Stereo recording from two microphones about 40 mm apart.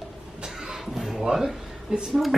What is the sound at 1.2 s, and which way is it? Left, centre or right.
Speech, centre.